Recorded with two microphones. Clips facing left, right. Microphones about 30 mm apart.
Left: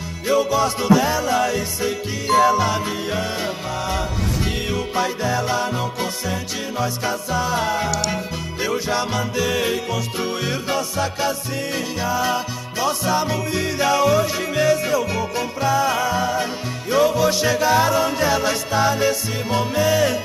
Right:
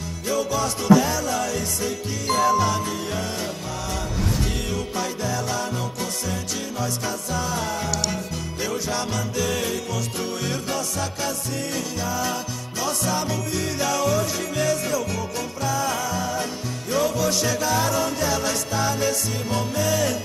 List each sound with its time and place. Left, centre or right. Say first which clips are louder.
0.3 s music: left 6 dB; left
4.6 s music: left 5 dB; left